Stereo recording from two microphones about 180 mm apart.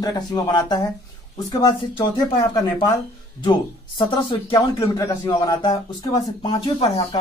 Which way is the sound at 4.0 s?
30° left (ahead or behind).